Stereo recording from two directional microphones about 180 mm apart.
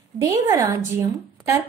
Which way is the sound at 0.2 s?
15° right (ahead or behind).